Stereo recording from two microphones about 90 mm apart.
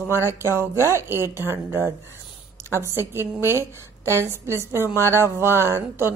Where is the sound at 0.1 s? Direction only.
30° right (ahead or behind).